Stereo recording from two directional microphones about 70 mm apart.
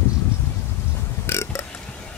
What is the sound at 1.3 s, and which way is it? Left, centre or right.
Burping, left.